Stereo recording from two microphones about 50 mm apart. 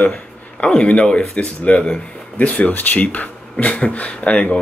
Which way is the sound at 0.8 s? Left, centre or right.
Left.